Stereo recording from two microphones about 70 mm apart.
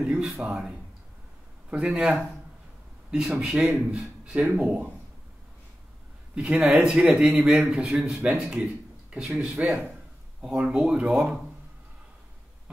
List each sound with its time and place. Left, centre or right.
0.0 s speech: centre
6.3 s speech: centre